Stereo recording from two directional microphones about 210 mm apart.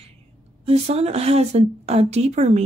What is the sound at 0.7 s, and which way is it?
Speech, 30° right (ahead or behind).